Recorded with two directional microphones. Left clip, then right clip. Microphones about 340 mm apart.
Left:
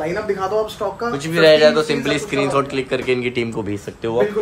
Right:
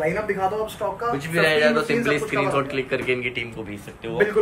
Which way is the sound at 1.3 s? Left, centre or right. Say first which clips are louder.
Left 8 dB; centre.